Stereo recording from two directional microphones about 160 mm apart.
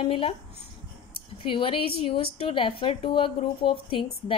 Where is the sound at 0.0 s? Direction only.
35° left (ahead or behind).